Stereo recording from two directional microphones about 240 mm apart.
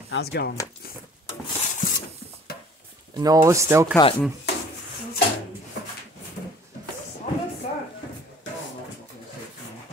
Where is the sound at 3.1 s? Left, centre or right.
Centre.